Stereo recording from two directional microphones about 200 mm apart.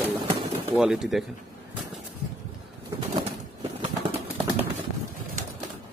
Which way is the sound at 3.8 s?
25° right (ahead or behind).